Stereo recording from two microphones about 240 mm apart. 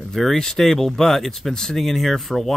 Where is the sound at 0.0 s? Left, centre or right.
Centre.